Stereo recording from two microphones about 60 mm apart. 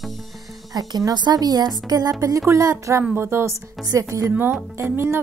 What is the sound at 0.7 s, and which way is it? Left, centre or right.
Speech, right.